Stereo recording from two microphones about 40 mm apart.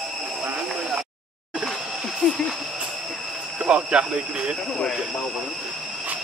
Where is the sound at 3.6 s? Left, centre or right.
Right.